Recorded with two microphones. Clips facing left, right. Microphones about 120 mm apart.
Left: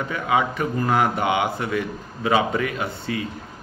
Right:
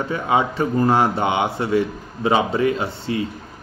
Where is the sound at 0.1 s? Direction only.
30° right (ahead or behind).